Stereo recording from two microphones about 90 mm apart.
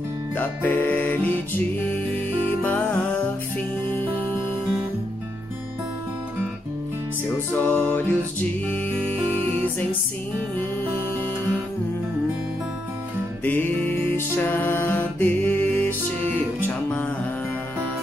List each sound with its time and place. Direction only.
0.4 s music: 20° left (ahead or behind)
2.6 s music: 20° left (ahead or behind)
7.5 s music: 15° left (ahead or behind)
9.2 s music: 90° right
13.4 s music: 20° left (ahead or behind)